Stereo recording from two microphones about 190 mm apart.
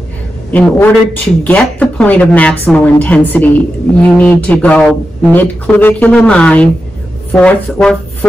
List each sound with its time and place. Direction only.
0.5 s a woman's voice: 10° left (ahead or behind)